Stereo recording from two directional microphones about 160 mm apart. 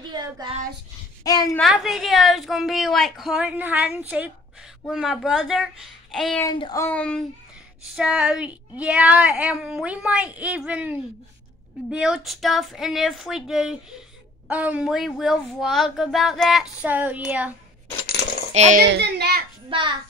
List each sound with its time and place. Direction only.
0.1 s child singing: 25° right (ahead or behind)
1.2 s child singing: 25° left (ahead or behind)
1.6 s a woman's voice: 5° right (ahead or behind)
6.4 s child singing: 25° left (ahead or behind)
6.8 s speech: 10° left (ahead or behind)
7.9 s a woman's voice: 5° right (ahead or behind)
18.5 s a child's voice: 45° right (ahead or behind)
18.8 s a child's voice: 90° right
19.7 s a child's voice: 35° right (ahead or behind)